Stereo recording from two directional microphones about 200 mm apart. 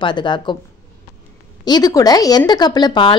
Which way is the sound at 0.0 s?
20° left (ahead or behind).